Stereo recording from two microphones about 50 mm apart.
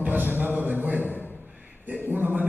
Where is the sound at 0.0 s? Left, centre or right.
Right.